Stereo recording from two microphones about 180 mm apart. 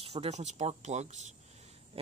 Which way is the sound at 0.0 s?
35° right (ahead or behind).